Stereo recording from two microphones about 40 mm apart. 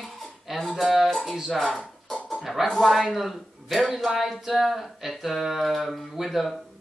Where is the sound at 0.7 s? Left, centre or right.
Centre.